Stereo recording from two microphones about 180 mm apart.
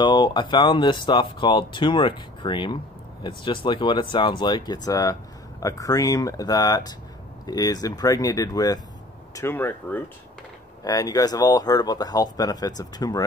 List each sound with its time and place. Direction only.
0.0 s speech: 25° left (ahead or behind)